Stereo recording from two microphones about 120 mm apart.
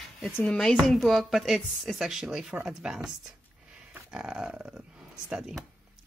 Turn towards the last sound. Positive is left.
turn(degrees=-5)  # may be behind; listen again after turning